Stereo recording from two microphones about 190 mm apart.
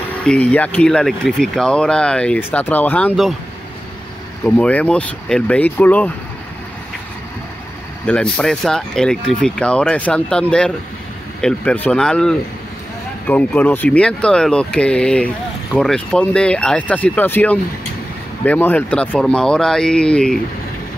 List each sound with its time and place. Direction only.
0.2 s speech: 5° left (ahead or behind)
4.5 s speech: 5° left (ahead or behind)
8.1 s speech: 5° left (ahead or behind)
11.4 s speech: 5° left (ahead or behind)